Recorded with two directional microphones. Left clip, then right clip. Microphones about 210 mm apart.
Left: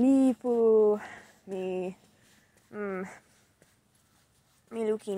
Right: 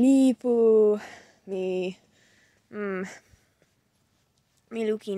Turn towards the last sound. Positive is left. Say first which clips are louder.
# right 2 dB
turn(degrees=-30)  # may be behind; listen again after turning